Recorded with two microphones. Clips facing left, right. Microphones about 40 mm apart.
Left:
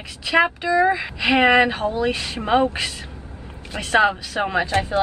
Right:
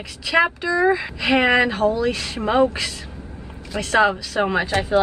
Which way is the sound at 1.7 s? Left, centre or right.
Left.